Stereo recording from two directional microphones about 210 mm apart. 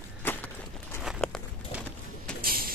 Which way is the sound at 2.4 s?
45° right (ahead or behind).